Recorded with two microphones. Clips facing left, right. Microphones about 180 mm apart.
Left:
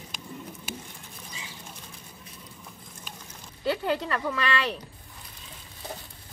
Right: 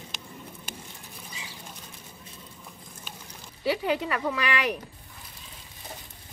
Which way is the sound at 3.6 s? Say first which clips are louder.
Right 1 dB; 10° right (ahead or behind).